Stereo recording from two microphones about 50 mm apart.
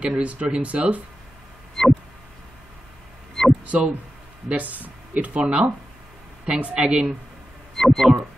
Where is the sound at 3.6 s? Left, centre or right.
Right.